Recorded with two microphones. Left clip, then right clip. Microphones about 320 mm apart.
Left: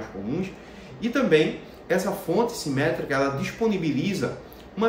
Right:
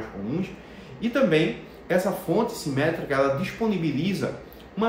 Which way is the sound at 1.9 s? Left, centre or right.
Centre.